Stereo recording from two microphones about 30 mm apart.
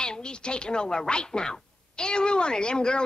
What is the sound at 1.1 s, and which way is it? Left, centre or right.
Speech, left.